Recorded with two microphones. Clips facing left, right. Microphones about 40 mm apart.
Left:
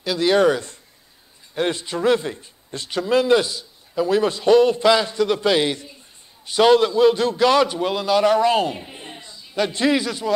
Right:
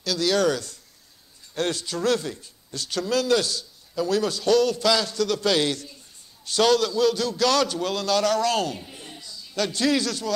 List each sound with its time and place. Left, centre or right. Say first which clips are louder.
0.0 s speech: left 5 dB; left